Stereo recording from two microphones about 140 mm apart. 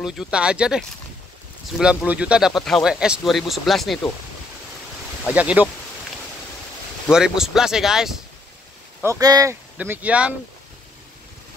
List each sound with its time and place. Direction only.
0.0 s speech: 5° right (ahead or behind)
5.3 s speech: 10° right (ahead or behind)
7.1 s speech: 5° right (ahead or behind)
9.0 s speech: 25° right (ahead or behind)
9.8 s speech: 10° right (ahead or behind)